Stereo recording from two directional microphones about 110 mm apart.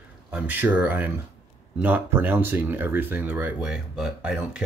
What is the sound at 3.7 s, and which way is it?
Speech, 5° right (ahead or behind).